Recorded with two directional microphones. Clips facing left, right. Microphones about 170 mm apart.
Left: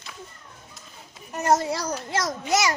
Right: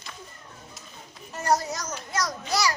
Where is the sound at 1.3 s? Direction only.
20° left (ahead or behind).